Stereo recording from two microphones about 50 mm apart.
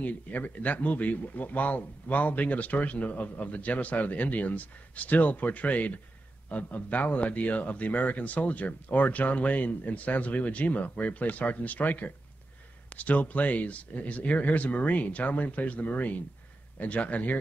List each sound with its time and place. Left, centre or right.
0.0 s a man's voice: left